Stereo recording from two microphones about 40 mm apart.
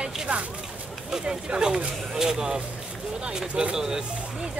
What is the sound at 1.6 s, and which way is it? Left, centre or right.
Speech, centre.